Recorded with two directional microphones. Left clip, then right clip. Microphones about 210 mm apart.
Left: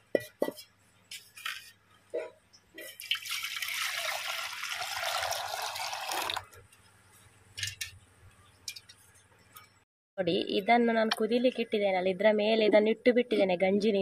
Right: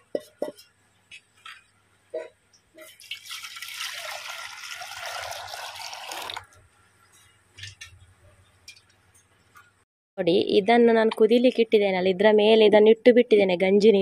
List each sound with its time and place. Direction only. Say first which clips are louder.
3.1 s water: left 4 dB; 15° left (ahead or behind)
7.5 s a sound: left 4 dB; 50° left (ahead or behind)
10.1 s speech: right 9 dB; 30° right (ahead or behind)